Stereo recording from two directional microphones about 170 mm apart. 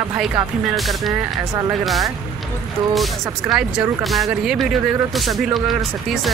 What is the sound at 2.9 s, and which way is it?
Speech, centre (ahead or behind).